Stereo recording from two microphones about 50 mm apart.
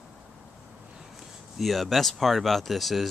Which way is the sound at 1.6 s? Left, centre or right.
Centre.